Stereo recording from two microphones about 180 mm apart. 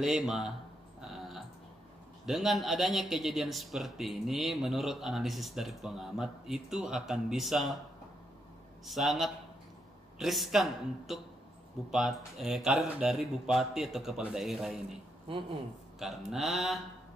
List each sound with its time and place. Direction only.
0.0 s a man's voice: centre (ahead or behind)
2.2 s a man's voice: centre (ahead or behind)
8.8 s a man's voice: centre (ahead or behind)
15.2 s speech: 30° right (ahead or behind)
16.0 s a man's voice: centre (ahead or behind)